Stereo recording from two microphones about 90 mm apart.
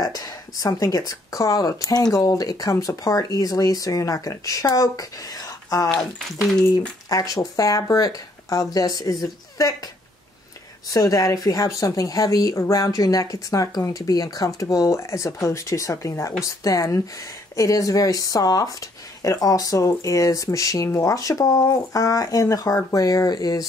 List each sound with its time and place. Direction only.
0.0 s speech: 45° left (ahead or behind)
7.1 s speech: 40° left (ahead or behind)
10.9 s speech: 40° left (ahead or behind)